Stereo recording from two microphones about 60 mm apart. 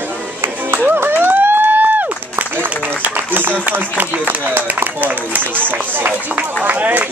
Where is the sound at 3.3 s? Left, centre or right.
Right.